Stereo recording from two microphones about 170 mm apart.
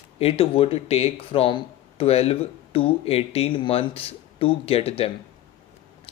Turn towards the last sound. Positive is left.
turn(degrees=35)  # may be behind; listen again after turning